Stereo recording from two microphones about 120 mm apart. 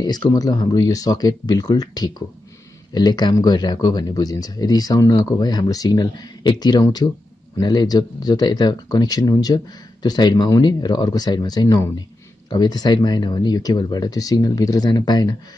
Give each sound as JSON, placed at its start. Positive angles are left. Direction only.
{"t": 0.0, "sound": "speech", "side_deg": 35}